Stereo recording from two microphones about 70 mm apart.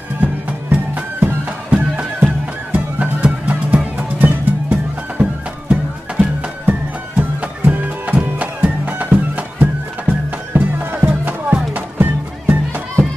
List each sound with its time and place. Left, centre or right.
0.2 s music: centre